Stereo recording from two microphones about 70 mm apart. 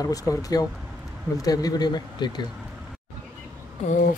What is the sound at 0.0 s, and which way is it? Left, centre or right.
Speech, left.